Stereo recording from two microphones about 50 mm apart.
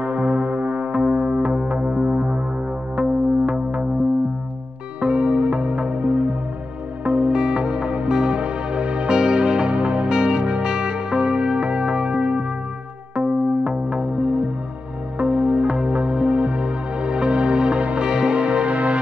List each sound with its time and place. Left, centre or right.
0.0 s music: right
5.0 s music: right